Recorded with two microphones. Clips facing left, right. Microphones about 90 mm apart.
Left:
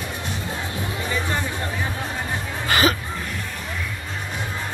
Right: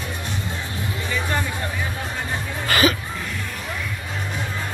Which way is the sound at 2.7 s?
20° left (ahead or behind).